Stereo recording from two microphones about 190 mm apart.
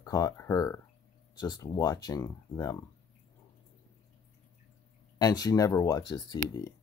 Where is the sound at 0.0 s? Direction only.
20° left (ahead or behind).